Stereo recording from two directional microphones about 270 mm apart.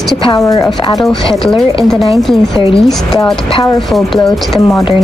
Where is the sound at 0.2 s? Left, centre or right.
Centre.